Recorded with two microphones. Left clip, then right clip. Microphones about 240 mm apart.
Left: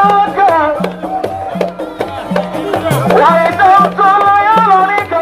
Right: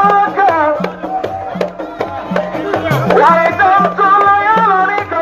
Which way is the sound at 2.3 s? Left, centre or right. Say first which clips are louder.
Left 1 dB; left.